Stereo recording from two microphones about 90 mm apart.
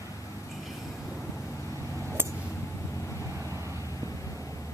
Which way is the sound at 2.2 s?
25° right (ahead or behind).